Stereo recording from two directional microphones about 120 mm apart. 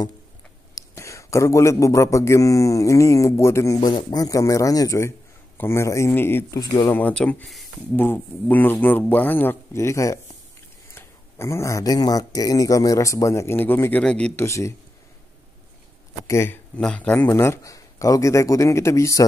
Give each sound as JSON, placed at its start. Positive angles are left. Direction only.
{"t": 0.7, "sound": "speech", "side_deg": 25}
{"t": 3.8, "sound": "speech", "side_deg": 35}
{"t": 6.6, "sound": "speech", "side_deg": 35}
{"t": 6.9, "sound": "speech", "side_deg": 15}
{"t": 14.3, "sound": "speech", "side_deg": 25}
{"t": 16.3, "sound": "speech", "side_deg": 20}
{"t": 16.7, "sound": "speech", "side_deg": 10}
{"t": 17.3, "sound": "speech", "side_deg": 25}